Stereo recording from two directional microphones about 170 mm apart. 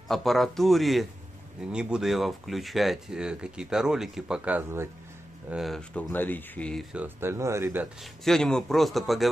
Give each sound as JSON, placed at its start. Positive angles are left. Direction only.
{"t": 0.1, "sound": "speech", "side_deg": 0}
{"t": 5.5, "sound": "speech", "side_deg": 0}
{"t": 6.9, "sound": "speech", "side_deg": -10}
{"t": 8.0, "sound": "speech", "side_deg": 0}